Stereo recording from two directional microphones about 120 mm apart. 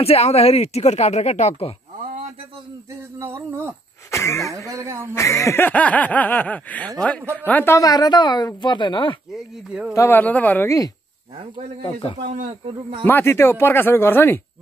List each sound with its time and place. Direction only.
0.0 s speech: 60° left (ahead or behind)
3.0 s a sound: 20° right (ahead or behind)
4.1 s speech: 25° left (ahead or behind)
4.6 s a sound: 25° right (ahead or behind)
5.1 s speech: 25° left (ahead or behind)
7.7 s a woman's voice: 30° left (ahead or behind)
9.7 s speech: 5° right (ahead or behind)
9.9 s speech: 20° left (ahead or behind)
11.8 s a man's voice: 45° left (ahead or behind)
12.2 s speech: 80° right
13.0 s speech: 20° left (ahead or behind)